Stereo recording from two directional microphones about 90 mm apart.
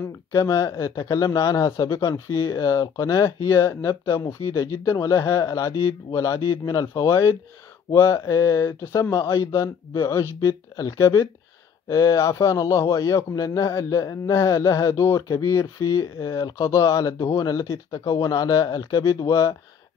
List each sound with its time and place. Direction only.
0.3 s speech: 40° left (ahead or behind)
1.7 s speech: 30° left (ahead or behind)